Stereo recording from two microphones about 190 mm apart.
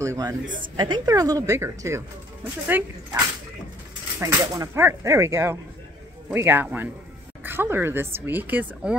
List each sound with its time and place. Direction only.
0.0 s speech: 15° right (ahead or behind)